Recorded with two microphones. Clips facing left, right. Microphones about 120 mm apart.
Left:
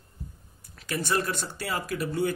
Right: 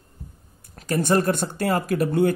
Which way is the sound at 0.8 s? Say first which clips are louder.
Right 8 dB; 40° right (ahead or behind).